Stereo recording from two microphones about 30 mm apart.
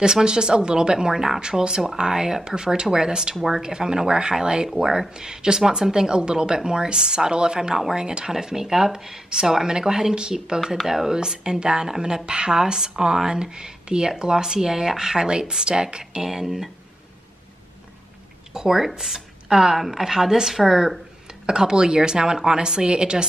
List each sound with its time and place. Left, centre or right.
0.0 s a woman's voice: right
10.6 s a woman's voice: centre
11.1 s speech: right
15.2 s speech: right
16.3 s a woman's voice: centre
18.5 s a woman's voice: centre